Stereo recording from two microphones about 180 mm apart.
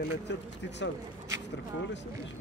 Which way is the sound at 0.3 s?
75° left (ahead or behind).